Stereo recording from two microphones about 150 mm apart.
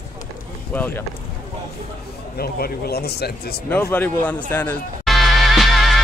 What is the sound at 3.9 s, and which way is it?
Speech, 10° left (ahead or behind).